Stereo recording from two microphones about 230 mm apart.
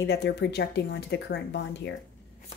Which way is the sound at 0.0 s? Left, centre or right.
Left.